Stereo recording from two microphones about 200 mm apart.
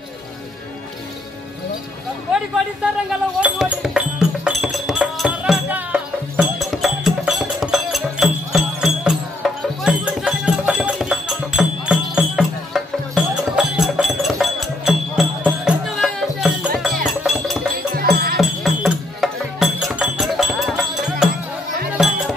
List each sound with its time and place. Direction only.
3.1 s music: 5° right (ahead or behind)
17.9 s music: 50° right (ahead or behind)
18.4 s music: centre (ahead or behind)